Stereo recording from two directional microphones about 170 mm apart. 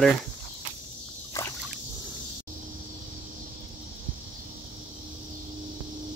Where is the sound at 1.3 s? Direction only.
20° left (ahead or behind).